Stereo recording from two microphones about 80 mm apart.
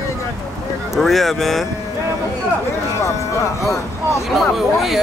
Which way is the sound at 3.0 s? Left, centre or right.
Left.